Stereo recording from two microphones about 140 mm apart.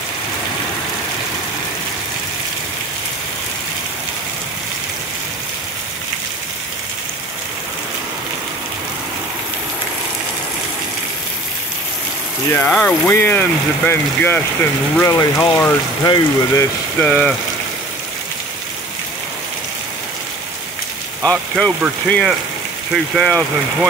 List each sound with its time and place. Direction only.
12.5 s speech: 10° left (ahead or behind); by 16.6 s 30° left (ahead or behind)
17.0 s speech: 5° left (ahead or behind)
21.3 s speech: 5° left (ahead or behind)